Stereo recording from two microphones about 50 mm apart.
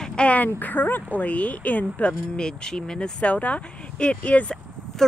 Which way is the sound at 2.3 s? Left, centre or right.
Centre.